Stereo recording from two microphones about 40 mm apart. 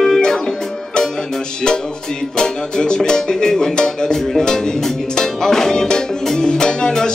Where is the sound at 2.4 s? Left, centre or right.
Centre.